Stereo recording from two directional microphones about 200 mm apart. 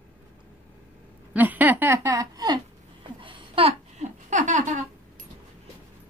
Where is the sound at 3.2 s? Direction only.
25° right (ahead or behind).